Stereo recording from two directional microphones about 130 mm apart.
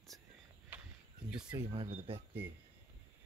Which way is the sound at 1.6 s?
45° right (ahead or behind).